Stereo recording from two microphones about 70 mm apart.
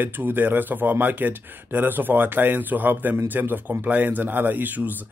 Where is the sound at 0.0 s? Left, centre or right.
Right.